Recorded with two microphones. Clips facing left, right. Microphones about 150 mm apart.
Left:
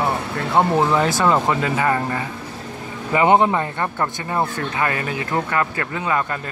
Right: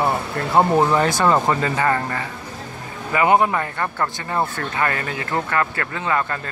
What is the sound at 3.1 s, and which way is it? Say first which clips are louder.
Speech: left 2 dB; 20° left (ahead or behind).